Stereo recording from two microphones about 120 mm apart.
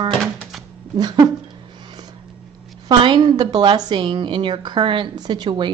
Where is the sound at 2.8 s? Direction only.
40° right (ahead or behind).